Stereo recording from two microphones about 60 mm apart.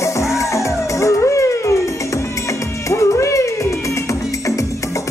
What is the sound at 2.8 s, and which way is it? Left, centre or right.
Music, left.